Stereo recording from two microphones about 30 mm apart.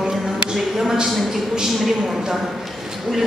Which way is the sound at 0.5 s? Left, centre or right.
Centre.